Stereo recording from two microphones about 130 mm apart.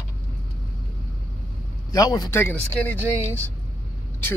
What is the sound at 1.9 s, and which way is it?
Speech, 30° left (ahead or behind).